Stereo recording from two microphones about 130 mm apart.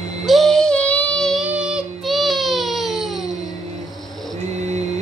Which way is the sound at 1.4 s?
10° right (ahead or behind).